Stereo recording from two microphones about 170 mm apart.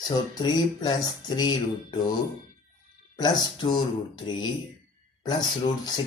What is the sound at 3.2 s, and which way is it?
Speech, 25° left (ahead or behind).